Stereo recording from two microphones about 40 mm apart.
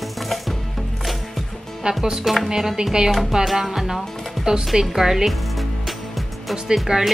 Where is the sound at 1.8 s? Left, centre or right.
Centre.